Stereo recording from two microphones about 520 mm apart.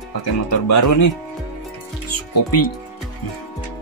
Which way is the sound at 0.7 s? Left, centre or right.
Left.